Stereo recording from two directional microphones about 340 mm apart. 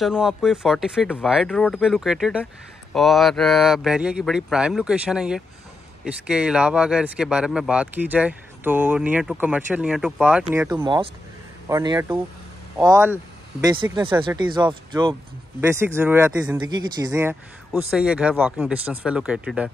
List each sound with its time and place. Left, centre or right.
0.0 s speech: centre